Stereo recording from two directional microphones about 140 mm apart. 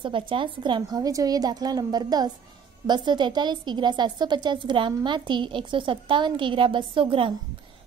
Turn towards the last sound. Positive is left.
turn(degrees=-40)  # may be behind; listen again after turning